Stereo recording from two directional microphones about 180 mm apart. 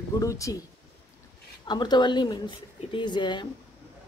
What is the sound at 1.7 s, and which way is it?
Speech, 25° left (ahead or behind).